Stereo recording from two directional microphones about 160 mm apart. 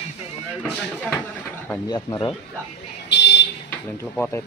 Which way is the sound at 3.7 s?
10° left (ahead or behind).